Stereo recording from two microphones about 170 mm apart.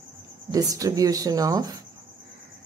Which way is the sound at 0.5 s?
20° right (ahead or behind).